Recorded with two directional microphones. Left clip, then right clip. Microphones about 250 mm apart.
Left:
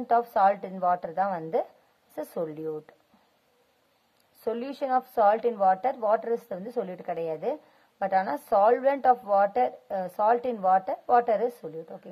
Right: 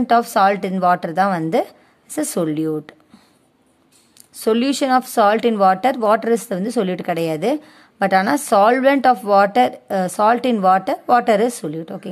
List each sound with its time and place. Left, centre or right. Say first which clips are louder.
0.3 s a woman's voice: right 8 dB; centre
4.5 s a woman's voice: right 12 dB; centre